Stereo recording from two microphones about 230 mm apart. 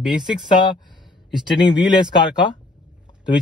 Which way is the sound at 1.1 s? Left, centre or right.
Centre.